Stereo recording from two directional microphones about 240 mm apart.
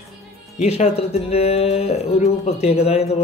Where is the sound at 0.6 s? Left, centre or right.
Left.